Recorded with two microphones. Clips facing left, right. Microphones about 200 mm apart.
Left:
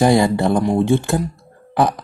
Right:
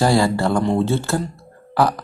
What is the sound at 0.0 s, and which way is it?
Speech, 20° left (ahead or behind).